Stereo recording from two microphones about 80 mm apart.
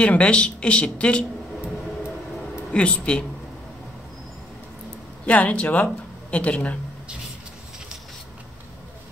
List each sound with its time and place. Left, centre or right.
0.0 s speech: centre
2.3 s a sound: centre
2.7 s speech: centre
5.2 s speech: centre